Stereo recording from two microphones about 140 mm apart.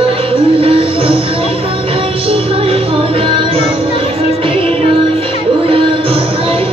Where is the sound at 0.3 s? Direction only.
40° right (ahead or behind).